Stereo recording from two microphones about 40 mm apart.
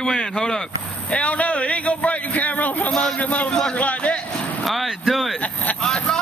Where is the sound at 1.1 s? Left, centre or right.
Left.